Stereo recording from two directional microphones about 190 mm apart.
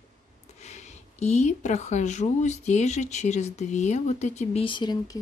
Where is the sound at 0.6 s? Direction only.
35° left (ahead or behind).